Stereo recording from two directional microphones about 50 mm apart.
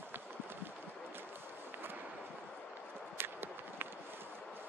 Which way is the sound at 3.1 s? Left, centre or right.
Right.